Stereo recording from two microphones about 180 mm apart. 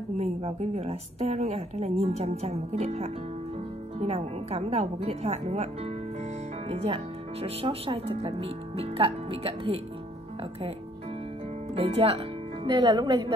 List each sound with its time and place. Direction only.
0.2 s speech: 35° right (ahead or behind)
6.7 s speech: 35° right (ahead or behind)
11.7 s speech: 30° right (ahead or behind)